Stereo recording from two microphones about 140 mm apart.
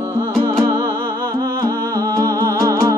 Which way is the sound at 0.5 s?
20° right (ahead or behind).